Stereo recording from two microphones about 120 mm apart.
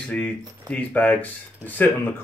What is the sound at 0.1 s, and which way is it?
Speech, 10° left (ahead or behind).